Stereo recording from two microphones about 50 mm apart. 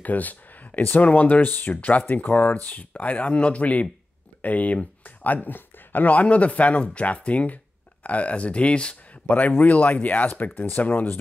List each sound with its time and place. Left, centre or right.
0.0 s speech: left
9.3 s speech: left